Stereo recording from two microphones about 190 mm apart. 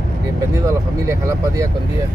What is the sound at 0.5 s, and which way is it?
Vehicle, 15° right (ahead or behind).